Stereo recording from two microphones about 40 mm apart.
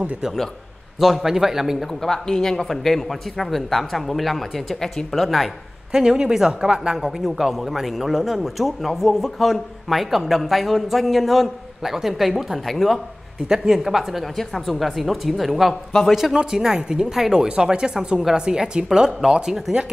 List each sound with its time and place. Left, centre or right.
0.9 s speech: centre
2.0 s a man's voice: centre
5.9 s speech: centre
7.2 s a man's voice: centre
13.5 s a man's voice: centre
15.9 s a man's voice: centre
16.3 s a woman's voice: centre